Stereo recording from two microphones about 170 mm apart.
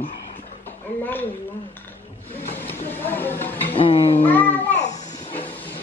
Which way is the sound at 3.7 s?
35° left (ahead or behind).